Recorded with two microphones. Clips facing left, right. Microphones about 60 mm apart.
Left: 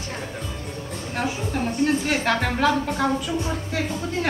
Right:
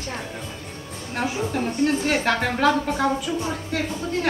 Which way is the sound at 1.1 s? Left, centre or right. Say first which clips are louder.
Right 2 dB; centre.